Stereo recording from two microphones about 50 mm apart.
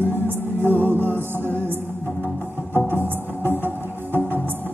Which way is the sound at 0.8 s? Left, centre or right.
Right.